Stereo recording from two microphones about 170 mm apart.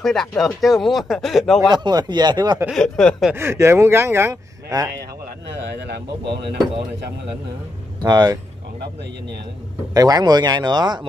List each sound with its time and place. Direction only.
0.0 s speech: centre (ahead or behind)
1.7 s speech: 25° right (ahead or behind)
2.7 s speech: 5° left (ahead or behind)
3.3 s speech: 15° right (ahead or behind)
5.7 s a man's voice: 85° right
8.0 s speech: 25° right (ahead or behind)
9.9 s speech: 20° right (ahead or behind)